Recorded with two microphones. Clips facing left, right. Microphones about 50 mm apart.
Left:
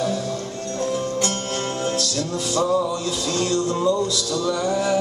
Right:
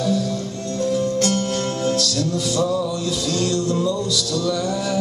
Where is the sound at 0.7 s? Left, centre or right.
Left.